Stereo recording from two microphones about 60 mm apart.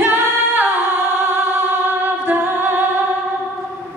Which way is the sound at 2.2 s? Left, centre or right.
Right.